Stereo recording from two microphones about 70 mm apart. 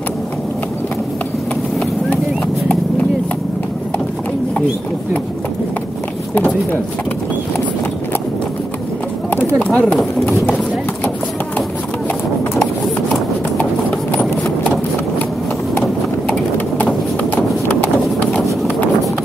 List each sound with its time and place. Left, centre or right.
6.3 s speech: left
9.6 s speech: centre
13.6 s clip-clop: left
16.5 s clip-clop: left